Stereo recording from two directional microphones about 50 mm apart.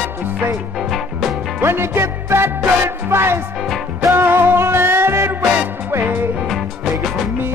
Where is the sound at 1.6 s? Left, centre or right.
Right.